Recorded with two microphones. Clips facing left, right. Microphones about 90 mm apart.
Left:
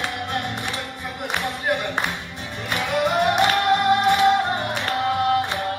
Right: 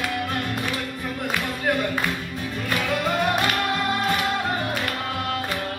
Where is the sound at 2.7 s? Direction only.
20° left (ahead or behind).